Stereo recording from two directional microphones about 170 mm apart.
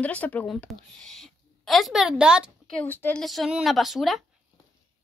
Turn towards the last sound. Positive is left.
turn(degrees=0)  # may be behind; listen again after turning